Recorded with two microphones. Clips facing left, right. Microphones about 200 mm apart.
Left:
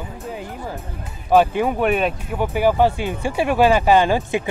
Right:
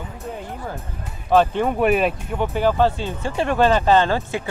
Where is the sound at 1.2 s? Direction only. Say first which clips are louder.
Left 1 dB; 10° left (ahead or behind).